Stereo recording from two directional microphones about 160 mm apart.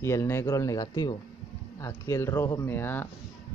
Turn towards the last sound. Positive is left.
turn(degrees=15)  # may be behind; listen again after turning